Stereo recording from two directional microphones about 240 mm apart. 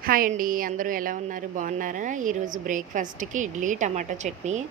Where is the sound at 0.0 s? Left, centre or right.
Right.